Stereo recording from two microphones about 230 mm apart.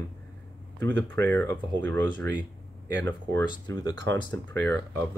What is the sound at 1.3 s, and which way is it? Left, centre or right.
Speech, centre.